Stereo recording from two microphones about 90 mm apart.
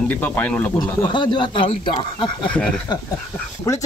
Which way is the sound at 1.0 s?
60° left (ahead or behind).